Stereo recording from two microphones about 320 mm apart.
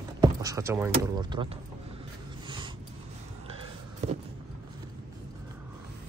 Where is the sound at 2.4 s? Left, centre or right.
Centre.